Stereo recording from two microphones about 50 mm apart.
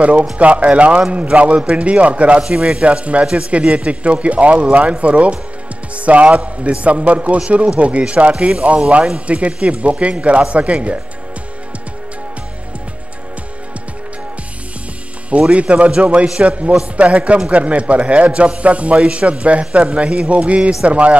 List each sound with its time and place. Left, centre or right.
0.0 s speech: right
15.5 s speech: right